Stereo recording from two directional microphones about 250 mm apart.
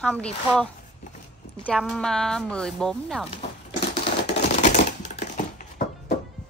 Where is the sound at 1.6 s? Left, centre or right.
Centre.